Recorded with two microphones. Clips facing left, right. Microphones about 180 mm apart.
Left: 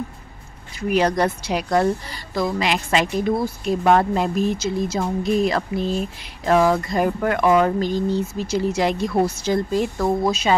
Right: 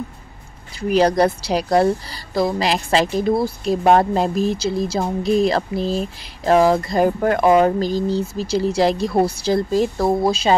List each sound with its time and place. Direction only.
0.7 s speech: 35° right (ahead or behind)